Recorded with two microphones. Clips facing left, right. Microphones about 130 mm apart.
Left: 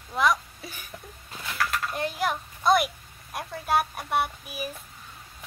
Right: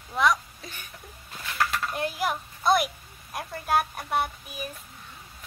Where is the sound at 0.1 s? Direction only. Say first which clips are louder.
Even; centre (ahead or behind).